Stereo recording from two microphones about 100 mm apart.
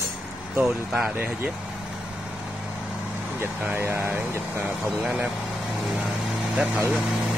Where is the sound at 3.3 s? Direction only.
20° right (ahead or behind).